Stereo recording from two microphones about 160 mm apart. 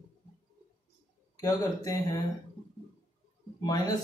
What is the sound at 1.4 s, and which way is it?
Speech, 20° left (ahead or behind).